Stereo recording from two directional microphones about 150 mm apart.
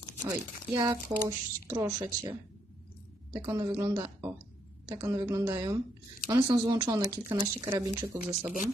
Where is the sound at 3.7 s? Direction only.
20° right (ahead or behind).